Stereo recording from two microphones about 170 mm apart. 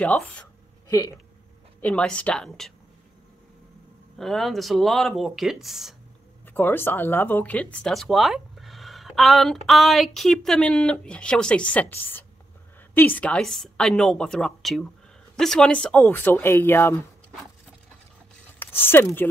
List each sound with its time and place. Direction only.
0.0 s speech: 10° left (ahead or behind)
0.8 s speech: 20° left (ahead or behind)
1.8 s speech: 5° left (ahead or behind)
4.2 s speech: centre (ahead or behind)
6.4 s speech: 10° left (ahead or behind)
18.6 s speech: 10° left (ahead or behind)